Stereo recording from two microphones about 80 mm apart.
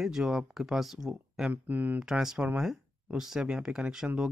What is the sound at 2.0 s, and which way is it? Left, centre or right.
Speech, centre.